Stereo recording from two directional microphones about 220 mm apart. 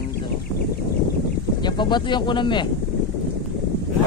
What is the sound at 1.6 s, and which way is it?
Speech, 20° left (ahead or behind).